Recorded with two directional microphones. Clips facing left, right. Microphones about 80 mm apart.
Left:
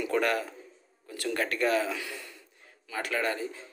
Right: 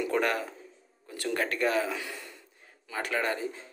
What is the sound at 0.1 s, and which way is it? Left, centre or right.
A man's voice, right.